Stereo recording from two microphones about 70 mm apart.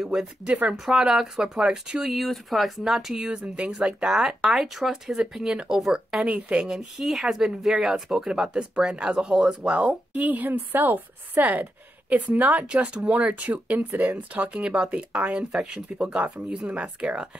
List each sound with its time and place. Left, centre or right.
0.0 s speech: centre
6.2 s speech: centre
9.6 s speech: centre